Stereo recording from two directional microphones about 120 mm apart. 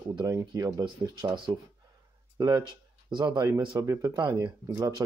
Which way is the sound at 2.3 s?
35° right (ahead or behind).